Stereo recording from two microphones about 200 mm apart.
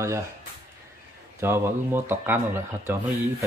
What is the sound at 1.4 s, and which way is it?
Speech, 10° right (ahead or behind).